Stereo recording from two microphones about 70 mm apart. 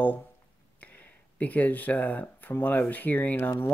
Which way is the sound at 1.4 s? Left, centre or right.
Left.